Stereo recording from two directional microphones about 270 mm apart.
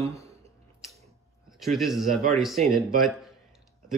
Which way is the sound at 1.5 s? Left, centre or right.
Centre.